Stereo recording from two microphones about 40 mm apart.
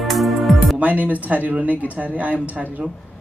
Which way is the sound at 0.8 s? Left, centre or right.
Right.